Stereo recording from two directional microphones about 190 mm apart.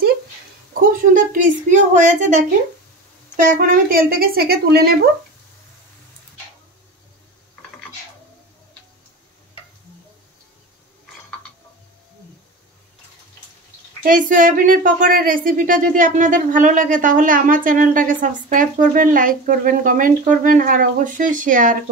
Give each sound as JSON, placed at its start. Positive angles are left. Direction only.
{"t": 0.7, "sound": "a sound", "side_deg": -45}
{"t": 3.3, "sound": "speech", "side_deg": -45}
{"t": 14.0, "sound": "speech", "side_deg": -45}